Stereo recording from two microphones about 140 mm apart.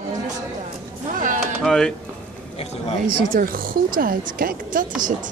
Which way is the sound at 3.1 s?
85° right.